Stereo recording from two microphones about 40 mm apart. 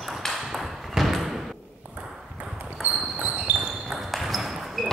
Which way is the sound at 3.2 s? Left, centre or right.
Centre.